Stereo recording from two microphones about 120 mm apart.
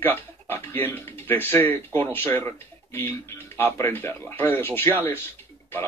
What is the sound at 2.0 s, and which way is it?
Speech, 20° left (ahead or behind).